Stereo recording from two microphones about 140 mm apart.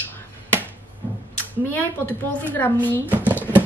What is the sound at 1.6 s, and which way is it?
A woman's voice, 10° left (ahead or behind).